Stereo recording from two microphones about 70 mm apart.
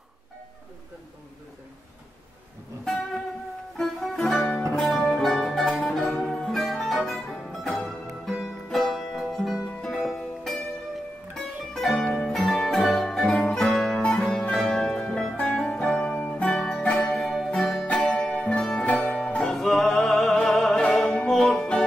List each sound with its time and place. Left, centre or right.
3.7 s music: centre
4.4 s music: left
4.7 s music: centre
17.8 s music: centre